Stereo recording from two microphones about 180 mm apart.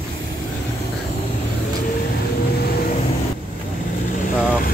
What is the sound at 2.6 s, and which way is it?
Vehicle, 60° left (ahead or behind).